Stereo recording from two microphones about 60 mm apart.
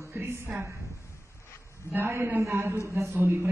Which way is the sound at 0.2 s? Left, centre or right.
Right.